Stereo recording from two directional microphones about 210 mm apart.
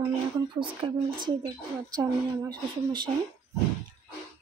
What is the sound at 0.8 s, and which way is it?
Speech, 25° right (ahead or behind).